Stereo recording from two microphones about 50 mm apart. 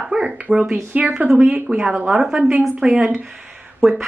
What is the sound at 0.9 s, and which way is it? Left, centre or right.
Speech, right.